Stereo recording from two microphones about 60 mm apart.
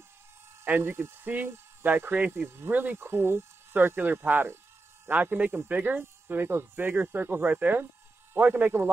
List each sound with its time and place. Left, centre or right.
0.7 s speech: right